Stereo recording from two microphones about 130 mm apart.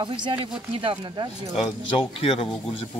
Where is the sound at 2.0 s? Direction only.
45° left (ahead or behind).